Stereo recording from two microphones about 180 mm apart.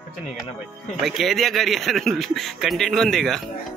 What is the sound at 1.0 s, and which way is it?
Speech, centre (ahead or behind).